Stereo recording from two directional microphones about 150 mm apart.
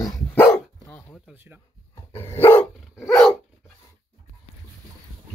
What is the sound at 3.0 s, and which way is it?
Dog, centre (ahead or behind).